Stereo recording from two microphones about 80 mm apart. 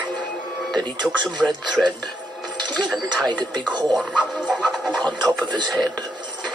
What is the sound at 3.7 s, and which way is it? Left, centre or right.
Speech, right.